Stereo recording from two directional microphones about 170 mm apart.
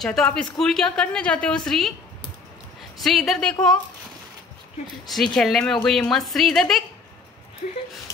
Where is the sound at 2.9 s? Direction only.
Centre (ahead or behind).